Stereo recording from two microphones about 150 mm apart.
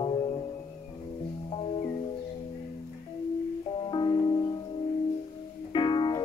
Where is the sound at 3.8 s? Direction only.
30° left (ahead or behind).